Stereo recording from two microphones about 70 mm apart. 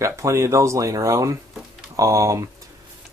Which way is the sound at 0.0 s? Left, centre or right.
Right.